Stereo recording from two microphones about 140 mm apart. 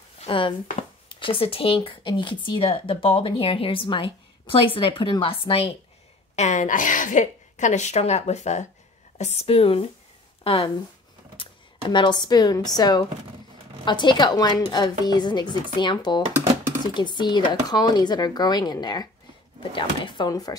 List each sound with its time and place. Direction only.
0.2 s speech: 40° left (ahead or behind)
6.3 s a woman's voice: 55° left (ahead or behind); by 20.5 s 25° left (ahead or behind)